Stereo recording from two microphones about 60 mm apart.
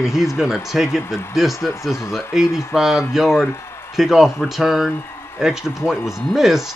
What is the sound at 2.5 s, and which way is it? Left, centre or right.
Speech, left.